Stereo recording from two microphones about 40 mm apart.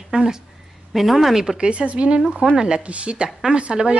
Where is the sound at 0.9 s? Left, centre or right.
Centre.